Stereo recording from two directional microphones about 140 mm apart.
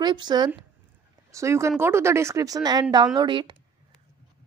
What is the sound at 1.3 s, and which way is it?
A woman's voice, 20° right (ahead or behind).